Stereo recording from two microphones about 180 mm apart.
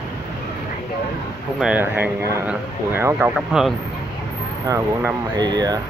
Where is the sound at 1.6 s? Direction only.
10° right (ahead or behind).